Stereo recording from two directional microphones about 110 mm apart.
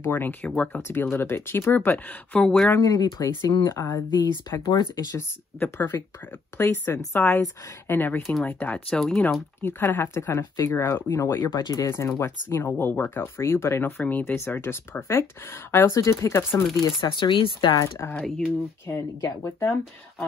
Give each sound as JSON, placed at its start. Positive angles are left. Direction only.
{"t": 0.0, "sound": "speech", "side_deg": 20}
{"t": 2.7, "sound": "speech", "side_deg": 35}
{"t": 5.1, "sound": "speech", "side_deg": 20}
{"t": 11.9, "sound": "speech", "side_deg": 25}
{"t": 16.8, "sound": "speech", "side_deg": 45}
{"t": 17.7, "sound": "speech", "side_deg": 25}